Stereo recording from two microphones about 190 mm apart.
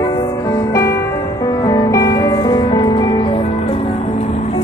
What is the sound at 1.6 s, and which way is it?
Music, 20° left (ahead or behind).